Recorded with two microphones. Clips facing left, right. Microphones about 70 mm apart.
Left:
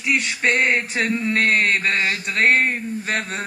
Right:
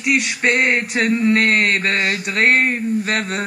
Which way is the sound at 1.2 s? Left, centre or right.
Right.